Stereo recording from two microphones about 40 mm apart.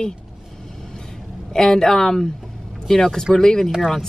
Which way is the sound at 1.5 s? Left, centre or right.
Centre.